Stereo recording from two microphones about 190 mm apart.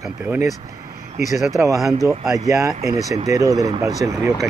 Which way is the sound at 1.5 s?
15° right (ahead or behind).